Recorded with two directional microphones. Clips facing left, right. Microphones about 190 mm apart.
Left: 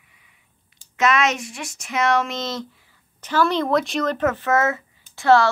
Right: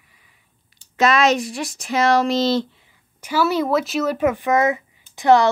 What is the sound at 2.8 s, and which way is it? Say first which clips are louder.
Speech: right 1 dB; 10° right (ahead or behind).